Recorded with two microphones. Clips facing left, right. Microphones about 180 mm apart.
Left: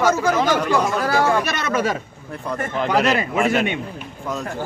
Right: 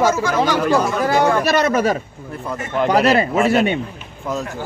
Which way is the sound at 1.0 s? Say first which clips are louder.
Right 3 dB; 20° right (ahead or behind).